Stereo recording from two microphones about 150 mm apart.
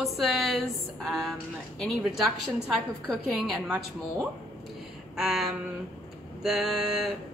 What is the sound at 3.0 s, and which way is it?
Speech, centre (ahead or behind).